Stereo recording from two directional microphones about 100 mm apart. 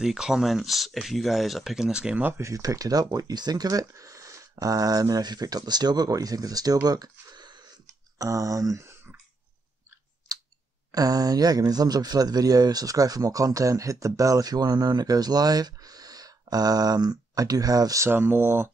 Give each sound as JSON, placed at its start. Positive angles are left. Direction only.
{"t": 0.0, "sound": "speech", "side_deg": -5}
{"t": 2.4, "sound": "speech", "side_deg": -35}
{"t": 8.2, "sound": "speech", "side_deg": -35}
{"t": 10.9, "sound": "speech", "side_deg": -40}